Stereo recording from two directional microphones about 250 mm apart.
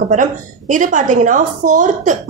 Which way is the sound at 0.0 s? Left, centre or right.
Right.